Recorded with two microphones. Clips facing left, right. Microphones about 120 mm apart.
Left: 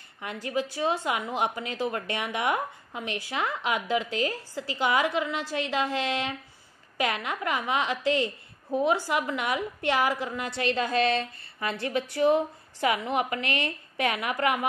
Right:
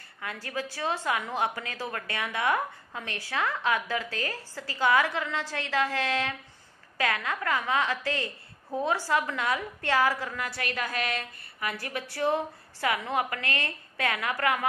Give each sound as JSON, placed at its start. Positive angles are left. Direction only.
{"t": 0.2, "sound": "a woman's voice", "side_deg": 20}